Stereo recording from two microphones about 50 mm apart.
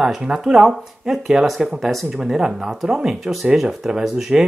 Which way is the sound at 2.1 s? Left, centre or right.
Centre.